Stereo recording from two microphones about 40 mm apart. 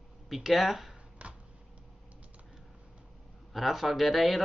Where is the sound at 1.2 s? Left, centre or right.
Right.